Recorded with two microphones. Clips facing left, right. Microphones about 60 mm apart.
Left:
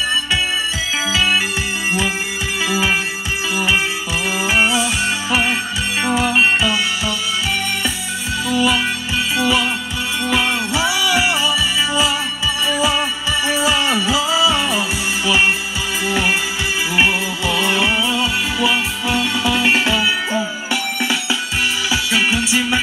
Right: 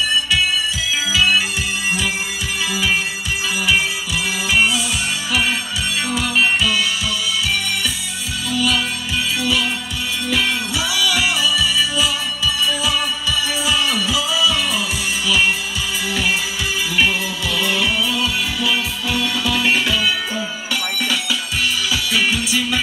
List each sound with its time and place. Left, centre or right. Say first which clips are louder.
1.1 s music: right 1 dB; left
3.5 s music: left 1 dB; left
8.5 s music: left 2 dB; left